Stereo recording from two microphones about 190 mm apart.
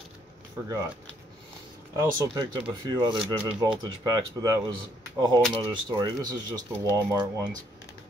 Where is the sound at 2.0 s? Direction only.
20° right (ahead or behind).